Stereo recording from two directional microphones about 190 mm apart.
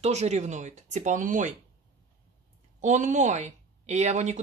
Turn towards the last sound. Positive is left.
turn(degrees=-35)  # may be behind; listen again after turning